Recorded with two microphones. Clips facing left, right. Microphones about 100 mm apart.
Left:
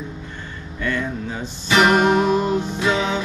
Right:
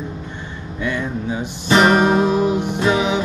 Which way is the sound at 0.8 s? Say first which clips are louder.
Right 2 dB; 15° right (ahead or behind).